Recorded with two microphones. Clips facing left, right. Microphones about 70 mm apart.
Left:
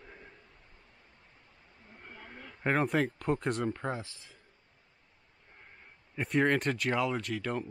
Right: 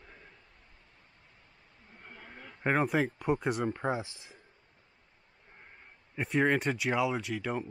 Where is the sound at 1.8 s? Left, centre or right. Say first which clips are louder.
Left 1 dB; centre.